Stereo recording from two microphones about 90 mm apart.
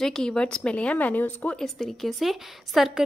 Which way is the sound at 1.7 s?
Centre (ahead or behind).